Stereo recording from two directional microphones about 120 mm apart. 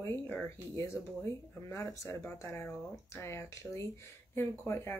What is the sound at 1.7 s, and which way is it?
Speech, 25° left (ahead or behind).